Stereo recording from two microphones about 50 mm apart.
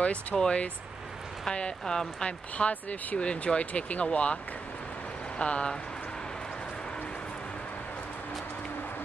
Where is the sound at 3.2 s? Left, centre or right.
Left.